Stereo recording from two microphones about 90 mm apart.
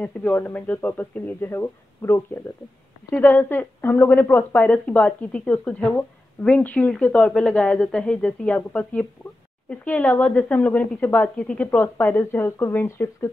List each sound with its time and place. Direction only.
0.0 s speech: 20° left (ahead or behind)
3.1 s speech: 20° left (ahead or behind)